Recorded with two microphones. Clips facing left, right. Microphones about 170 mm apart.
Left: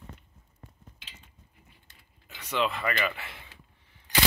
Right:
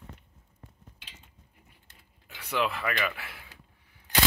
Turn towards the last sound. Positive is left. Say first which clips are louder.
# even
turn(degrees=-10)  # may be behind; listen again after turning